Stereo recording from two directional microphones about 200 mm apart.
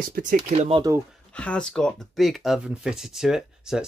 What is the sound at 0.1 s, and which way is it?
Speech, 40° right (ahead or behind).